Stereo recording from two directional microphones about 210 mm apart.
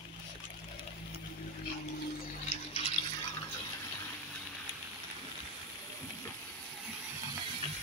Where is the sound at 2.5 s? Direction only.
30° left (ahead or behind).